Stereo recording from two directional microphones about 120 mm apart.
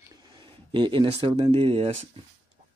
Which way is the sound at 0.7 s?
40° right (ahead or behind).